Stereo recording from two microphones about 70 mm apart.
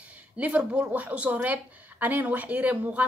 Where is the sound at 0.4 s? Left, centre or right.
Centre.